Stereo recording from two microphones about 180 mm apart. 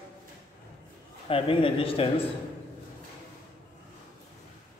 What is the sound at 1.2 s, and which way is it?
A man's voice, 30° left (ahead or behind).